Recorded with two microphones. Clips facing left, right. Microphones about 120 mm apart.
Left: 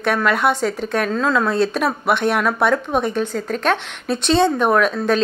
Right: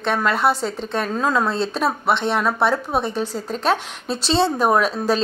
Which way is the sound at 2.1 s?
25° right (ahead or behind).